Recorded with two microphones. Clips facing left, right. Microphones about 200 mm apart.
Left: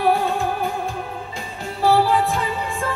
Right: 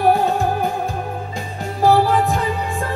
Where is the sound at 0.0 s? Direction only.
40° right (ahead or behind).